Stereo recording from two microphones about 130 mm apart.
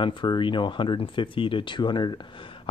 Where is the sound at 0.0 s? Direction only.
40° left (ahead or behind).